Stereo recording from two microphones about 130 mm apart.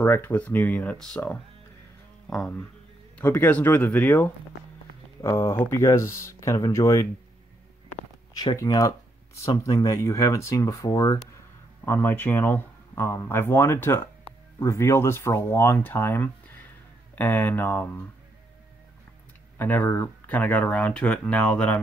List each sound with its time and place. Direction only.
0.0 s speech: 15° left (ahead or behind)
2.2 s speech: 5° left (ahead or behind); by 7.1 s 25° left (ahead or behind)
8.5 s speech: 30° left (ahead or behind)
19.6 s speech: 15° left (ahead or behind)